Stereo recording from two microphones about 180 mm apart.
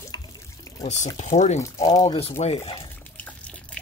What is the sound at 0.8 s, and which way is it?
Speech, 40° left (ahead or behind).